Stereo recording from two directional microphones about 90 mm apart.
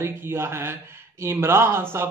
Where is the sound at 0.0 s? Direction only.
30° right (ahead or behind).